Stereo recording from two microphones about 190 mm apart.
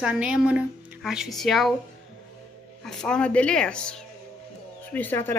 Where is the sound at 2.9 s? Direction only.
5° left (ahead or behind).